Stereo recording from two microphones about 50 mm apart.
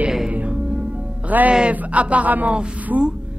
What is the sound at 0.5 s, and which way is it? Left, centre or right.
Music, centre.